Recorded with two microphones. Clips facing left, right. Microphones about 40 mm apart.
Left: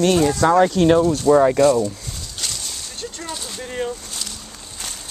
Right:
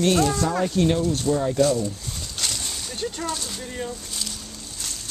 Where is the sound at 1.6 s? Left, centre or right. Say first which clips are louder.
Left 7 dB; left.